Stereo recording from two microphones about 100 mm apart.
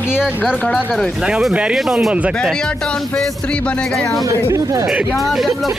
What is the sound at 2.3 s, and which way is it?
Speech, 5° left (ahead or behind).